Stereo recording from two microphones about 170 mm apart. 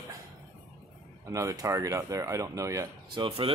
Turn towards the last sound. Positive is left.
turn(degrees=-30)  # may be behind; listen again after turning